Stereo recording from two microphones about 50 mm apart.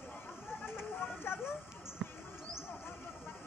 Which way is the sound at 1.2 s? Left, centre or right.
Left.